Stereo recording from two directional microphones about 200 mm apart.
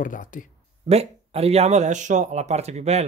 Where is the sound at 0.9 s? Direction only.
30° right (ahead or behind).